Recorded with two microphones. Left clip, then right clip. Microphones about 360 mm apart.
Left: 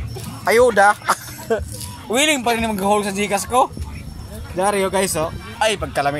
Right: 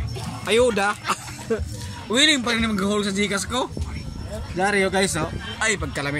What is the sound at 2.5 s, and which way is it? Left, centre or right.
Speech, centre.